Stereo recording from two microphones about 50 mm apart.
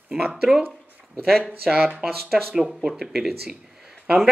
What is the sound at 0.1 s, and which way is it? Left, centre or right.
Speech, centre.